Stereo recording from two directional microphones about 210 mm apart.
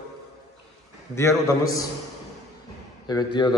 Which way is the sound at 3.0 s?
20° left (ahead or behind).